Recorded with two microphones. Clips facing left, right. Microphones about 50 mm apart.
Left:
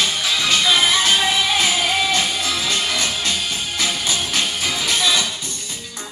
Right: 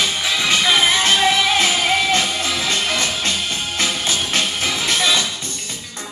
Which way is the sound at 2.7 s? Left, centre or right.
Right.